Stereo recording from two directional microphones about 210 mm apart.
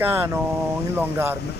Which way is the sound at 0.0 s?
10° right (ahead or behind).